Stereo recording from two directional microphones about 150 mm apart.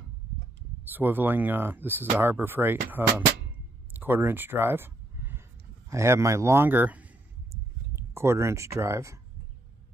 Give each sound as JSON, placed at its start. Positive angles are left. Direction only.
{"t": 0.8, "sound": "speech", "side_deg": -15}
{"t": 3.9, "sound": "a sound", "side_deg": -15}
{"t": 5.9, "sound": "speech", "side_deg": -20}